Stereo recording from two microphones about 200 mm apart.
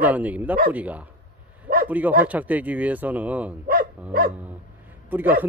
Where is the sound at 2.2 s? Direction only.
10° right (ahead or behind).